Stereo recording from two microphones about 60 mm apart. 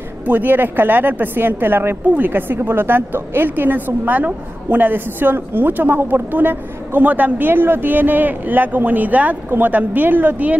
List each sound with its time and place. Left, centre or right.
0.3 s a woman's voice: right